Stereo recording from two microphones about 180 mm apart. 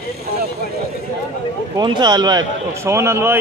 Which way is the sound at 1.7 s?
25° right (ahead or behind).